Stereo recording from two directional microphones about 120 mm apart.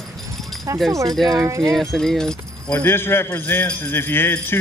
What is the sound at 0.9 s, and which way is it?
Speech, 25° right (ahead or behind).